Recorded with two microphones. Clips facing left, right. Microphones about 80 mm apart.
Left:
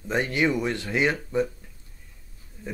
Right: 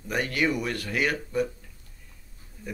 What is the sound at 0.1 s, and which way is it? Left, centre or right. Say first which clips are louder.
Speech: left 2 dB; left.